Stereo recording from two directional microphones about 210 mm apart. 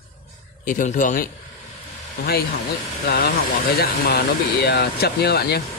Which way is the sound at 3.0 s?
50° left (ahead or behind).